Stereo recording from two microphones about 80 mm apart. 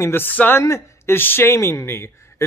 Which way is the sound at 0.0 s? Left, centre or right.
Left.